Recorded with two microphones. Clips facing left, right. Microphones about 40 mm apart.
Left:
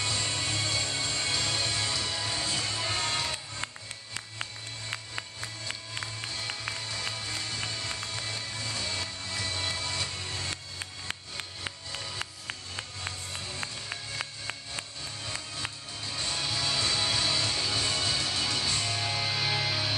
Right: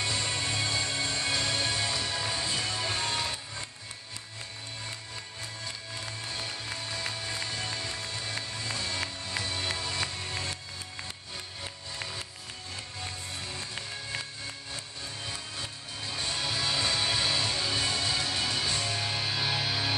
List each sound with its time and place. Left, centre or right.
0.0 s music: centre
3.6 s music: left
6.9 s music: centre
16.1 s music: centre